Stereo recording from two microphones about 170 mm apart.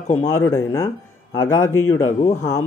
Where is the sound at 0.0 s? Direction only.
45° left (ahead or behind).